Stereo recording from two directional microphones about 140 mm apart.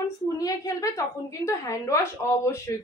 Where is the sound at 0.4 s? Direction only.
25° left (ahead or behind).